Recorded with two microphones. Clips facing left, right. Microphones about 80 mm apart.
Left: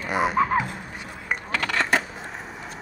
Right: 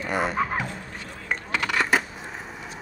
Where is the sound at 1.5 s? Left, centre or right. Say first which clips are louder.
Even; centre.